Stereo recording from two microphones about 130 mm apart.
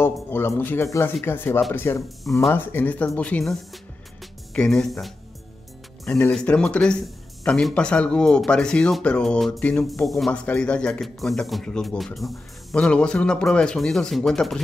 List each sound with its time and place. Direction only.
0.0 s speech: 15° left (ahead or behind)
6.3 s speech: 5° left (ahead or behind)